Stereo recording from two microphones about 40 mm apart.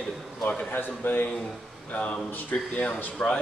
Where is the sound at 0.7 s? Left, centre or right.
Left.